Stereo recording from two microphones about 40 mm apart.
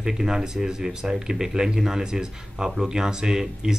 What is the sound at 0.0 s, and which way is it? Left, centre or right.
Speech, centre.